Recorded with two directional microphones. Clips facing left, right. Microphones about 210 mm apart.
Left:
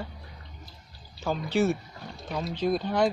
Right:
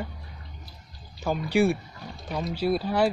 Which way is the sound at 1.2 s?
15° right (ahead or behind).